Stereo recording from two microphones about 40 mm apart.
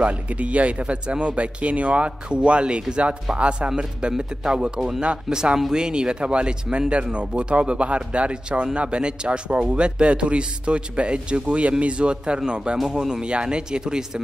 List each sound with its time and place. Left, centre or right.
0.0 s speech: right; by 14.2 s centre